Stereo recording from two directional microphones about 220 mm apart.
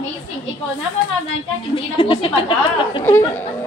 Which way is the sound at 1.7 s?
25° left (ahead or behind).